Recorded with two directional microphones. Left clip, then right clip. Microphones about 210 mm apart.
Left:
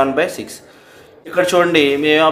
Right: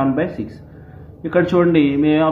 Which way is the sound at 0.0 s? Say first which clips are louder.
Left 4 dB; 20° left (ahead or behind).